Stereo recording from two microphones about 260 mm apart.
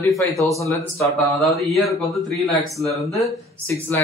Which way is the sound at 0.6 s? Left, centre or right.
Centre.